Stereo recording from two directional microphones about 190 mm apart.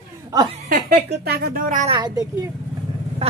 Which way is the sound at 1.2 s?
50° right (ahead or behind).